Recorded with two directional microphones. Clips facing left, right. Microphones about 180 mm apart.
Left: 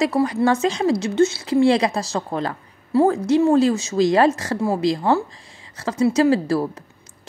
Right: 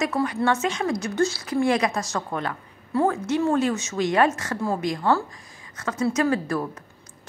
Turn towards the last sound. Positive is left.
turn(degrees=30)  # may be behind; listen again after turning